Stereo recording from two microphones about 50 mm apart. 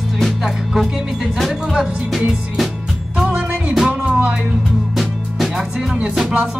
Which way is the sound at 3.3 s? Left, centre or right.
Right.